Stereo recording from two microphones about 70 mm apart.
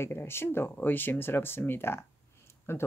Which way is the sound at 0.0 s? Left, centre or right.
Left.